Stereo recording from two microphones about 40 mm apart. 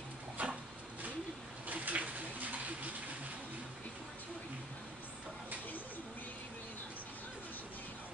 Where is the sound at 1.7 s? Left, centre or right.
Right.